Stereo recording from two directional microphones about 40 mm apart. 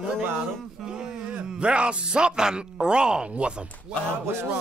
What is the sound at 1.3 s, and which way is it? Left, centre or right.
Speech, right.